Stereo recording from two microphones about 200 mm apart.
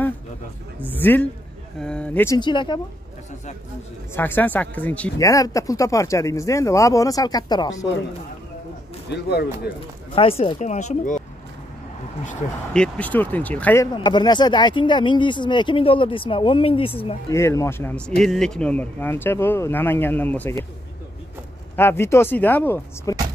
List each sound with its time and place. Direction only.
0.8 s speech: 10° left (ahead or behind)
2.3 s speech: 25° left (ahead or behind)
4.1 s speech: 10° left (ahead or behind)
9.1 s speech: 55° left (ahead or behind)
10.1 s speech: 30° left (ahead or behind)
12.7 s speech: 5° left (ahead or behind)
14.0 s speech: 20° left (ahead or behind)
17.3 s speech: 15° left (ahead or behind)
21.7 s speech: 10° left (ahead or behind)